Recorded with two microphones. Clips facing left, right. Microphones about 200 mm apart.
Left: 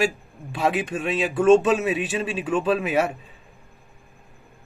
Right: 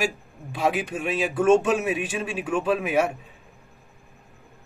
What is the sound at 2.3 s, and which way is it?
Speech, 10° right (ahead or behind).